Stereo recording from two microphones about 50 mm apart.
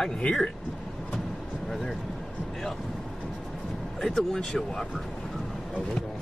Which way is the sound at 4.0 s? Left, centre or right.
Centre.